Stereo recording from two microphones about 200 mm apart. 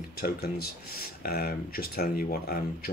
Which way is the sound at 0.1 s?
50° left (ahead or behind).